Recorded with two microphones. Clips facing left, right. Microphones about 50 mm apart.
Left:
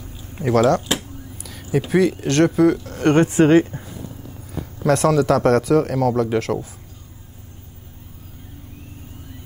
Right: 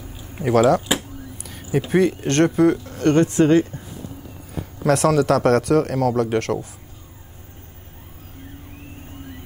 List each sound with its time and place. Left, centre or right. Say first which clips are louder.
0.0 s a sound: even; centre
3.0 s speech: left 1 dB; left
4.8 s a man's voice: left 1 dB; centre